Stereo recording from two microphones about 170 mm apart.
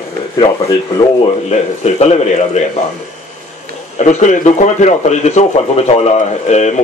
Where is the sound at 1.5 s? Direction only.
40° left (ahead or behind).